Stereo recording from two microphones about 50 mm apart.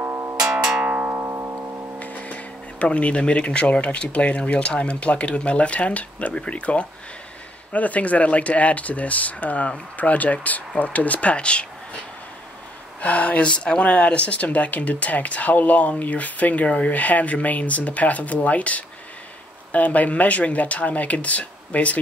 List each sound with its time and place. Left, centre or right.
0.0 s music: right
0.4 s music: centre
1.0 s music: right
2.0 s speech: left
13.0 s speech: left